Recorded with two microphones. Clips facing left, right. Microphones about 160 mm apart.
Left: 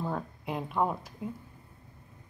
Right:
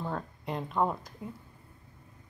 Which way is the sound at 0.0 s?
5° left (ahead or behind).